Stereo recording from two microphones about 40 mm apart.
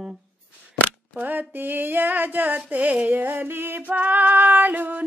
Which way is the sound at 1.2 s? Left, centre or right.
Right.